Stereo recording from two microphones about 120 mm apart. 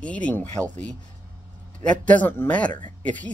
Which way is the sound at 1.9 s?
10° left (ahead or behind).